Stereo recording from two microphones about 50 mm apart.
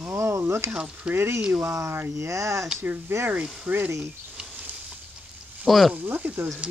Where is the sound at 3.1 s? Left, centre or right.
Right.